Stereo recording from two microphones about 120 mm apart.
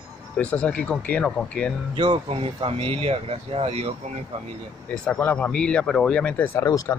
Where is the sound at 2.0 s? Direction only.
45° right (ahead or behind).